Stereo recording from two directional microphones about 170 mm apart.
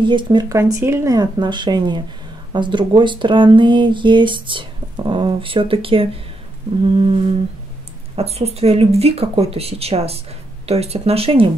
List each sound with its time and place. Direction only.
0.0 s speech: 30° right (ahead or behind)
0.6 s speech: 15° right (ahead or behind); by 7.2 s 35° right (ahead or behind)
8.2 s speech: 35° right (ahead or behind)